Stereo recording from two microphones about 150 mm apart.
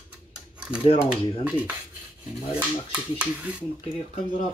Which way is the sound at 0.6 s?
5° right (ahead or behind).